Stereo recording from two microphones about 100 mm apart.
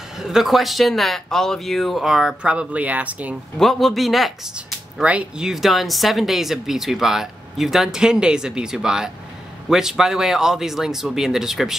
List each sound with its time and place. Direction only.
0.2 s speech: 5° right (ahead or behind)
3.5 s speech: centre (ahead or behind)